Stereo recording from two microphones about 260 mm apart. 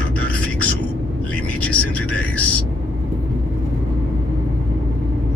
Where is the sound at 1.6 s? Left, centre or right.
Centre.